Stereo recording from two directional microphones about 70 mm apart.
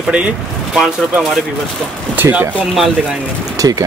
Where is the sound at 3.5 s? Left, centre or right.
Right.